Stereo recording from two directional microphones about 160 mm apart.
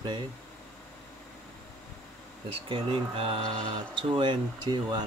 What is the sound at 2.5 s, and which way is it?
Speech, 35° right (ahead or behind).